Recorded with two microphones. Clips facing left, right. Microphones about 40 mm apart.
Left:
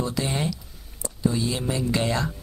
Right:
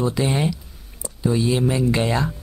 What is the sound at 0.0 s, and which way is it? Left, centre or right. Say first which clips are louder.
Speech: right 5 dB; centre.